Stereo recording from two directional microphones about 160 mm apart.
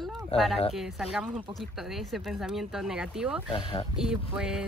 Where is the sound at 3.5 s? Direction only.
30° left (ahead or behind).